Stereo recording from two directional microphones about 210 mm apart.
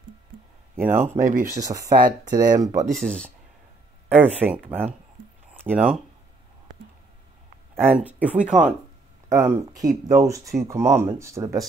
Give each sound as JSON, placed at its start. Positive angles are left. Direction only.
{"t": 0.7, "sound": "speech", "side_deg": -10}
{"t": 1.2, "sound": "speech", "side_deg": -40}
{"t": 1.6, "sound": "speech", "side_deg": -15}
{"t": 2.9, "sound": "speech", "side_deg": 5}
{"t": 4.4, "sound": "speech", "side_deg": -10}
{"t": 5.5, "sound": "a sound", "side_deg": -5}
{"t": 7.7, "sound": "speech", "side_deg": -10}